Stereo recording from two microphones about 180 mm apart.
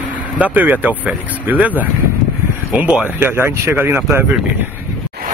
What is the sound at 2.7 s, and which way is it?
Speech, 5° right (ahead or behind).